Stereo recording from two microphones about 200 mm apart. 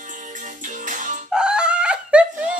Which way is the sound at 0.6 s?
40° right (ahead or behind).